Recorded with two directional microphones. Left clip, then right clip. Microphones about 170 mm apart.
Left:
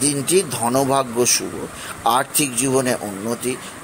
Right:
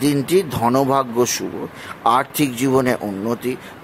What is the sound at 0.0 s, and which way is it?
Speech, 20° right (ahead or behind).